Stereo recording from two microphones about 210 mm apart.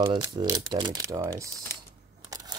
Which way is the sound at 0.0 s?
15° right (ahead or behind).